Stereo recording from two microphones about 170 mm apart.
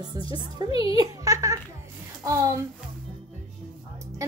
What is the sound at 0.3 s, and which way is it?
A woman's voice, 25° right (ahead or behind).